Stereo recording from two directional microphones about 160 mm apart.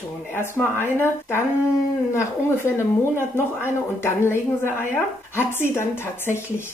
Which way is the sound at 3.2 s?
15° left (ahead or behind).